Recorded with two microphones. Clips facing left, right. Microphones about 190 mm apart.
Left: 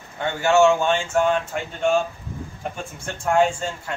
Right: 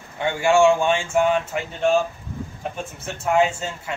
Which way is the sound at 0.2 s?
10° right (ahead or behind).